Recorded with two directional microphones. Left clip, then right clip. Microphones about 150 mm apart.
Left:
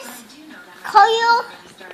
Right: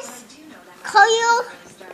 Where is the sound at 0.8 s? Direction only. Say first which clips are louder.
Left 1 dB; 15° right (ahead or behind).